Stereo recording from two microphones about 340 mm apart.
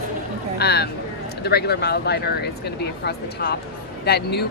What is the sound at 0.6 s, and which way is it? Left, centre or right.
Speech, left.